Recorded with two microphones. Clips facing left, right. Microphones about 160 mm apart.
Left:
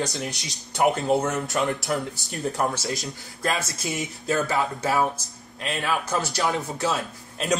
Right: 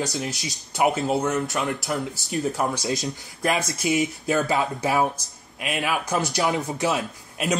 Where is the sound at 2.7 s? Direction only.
15° right (ahead or behind).